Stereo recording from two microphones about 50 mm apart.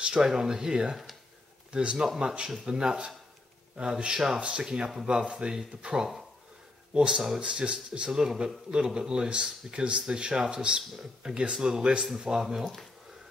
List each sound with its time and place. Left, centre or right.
0.0 s speech: centre
4.4 s speech: right; by 12.7 s centre